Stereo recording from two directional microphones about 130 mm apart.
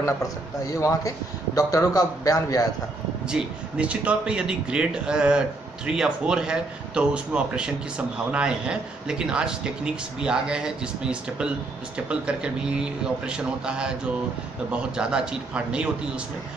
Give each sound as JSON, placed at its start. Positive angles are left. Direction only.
{"t": 0.7, "sound": "speech", "side_deg": 25}
{"t": 3.3, "sound": "a man's voice", "side_deg": -5}